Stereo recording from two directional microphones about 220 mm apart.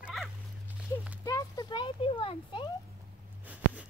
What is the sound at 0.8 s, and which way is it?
Speech, 5° right (ahead or behind).